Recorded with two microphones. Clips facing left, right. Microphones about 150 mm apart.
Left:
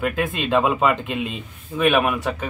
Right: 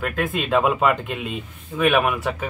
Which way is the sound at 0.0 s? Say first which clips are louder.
Left 1 dB; centre (ahead or behind).